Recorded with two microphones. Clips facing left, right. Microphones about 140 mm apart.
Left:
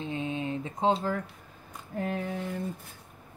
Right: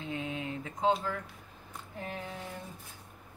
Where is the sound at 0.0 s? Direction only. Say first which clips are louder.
Left 4 dB; 25° left (ahead or behind).